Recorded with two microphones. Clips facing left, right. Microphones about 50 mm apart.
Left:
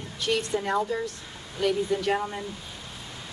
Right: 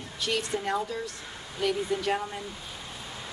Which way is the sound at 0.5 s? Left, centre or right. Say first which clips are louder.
Left 3 dB; centre.